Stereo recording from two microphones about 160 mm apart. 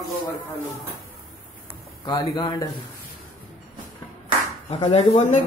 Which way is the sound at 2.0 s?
25° left (ahead or behind).